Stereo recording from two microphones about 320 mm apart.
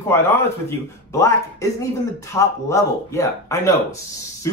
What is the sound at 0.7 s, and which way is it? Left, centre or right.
Speech, centre.